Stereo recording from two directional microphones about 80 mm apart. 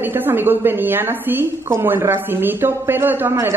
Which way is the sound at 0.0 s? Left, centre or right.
Right.